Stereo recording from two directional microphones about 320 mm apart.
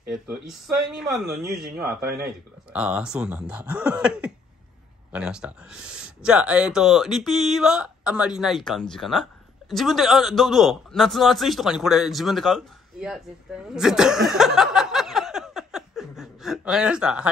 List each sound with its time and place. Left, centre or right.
0.1 s speech: centre
2.7 s speech: centre